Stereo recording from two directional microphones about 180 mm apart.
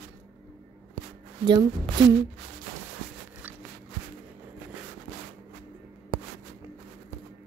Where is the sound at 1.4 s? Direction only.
25° right (ahead or behind).